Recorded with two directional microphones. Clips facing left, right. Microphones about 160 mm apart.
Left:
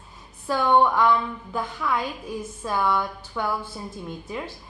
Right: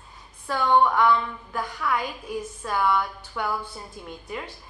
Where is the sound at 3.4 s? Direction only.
5° right (ahead or behind).